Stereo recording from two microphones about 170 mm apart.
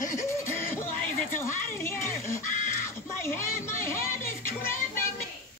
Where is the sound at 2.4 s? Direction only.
50° left (ahead or behind).